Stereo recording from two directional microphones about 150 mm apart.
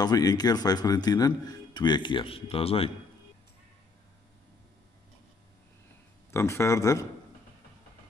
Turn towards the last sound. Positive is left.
turn(degrees=20)  # may be behind; listen again after turning